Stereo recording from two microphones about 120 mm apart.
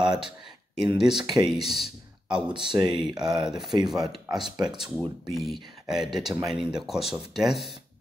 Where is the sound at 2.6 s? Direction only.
40° right (ahead or behind).